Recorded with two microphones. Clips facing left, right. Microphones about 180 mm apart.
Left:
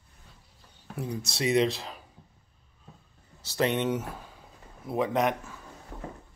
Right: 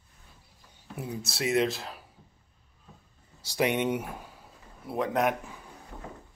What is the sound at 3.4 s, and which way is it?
Speech, 15° right (ahead or behind).